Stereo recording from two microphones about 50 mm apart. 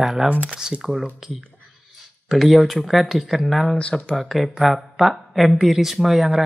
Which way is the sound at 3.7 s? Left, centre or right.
Left.